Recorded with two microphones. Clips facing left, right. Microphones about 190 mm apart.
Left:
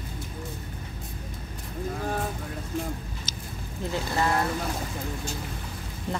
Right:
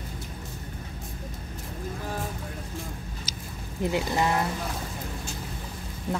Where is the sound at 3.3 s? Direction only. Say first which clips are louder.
Left 1 dB; 10° right (ahead or behind).